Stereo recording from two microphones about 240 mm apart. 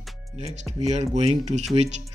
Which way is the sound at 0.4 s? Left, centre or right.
Right.